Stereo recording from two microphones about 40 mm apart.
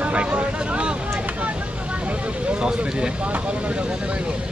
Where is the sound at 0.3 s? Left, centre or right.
Right.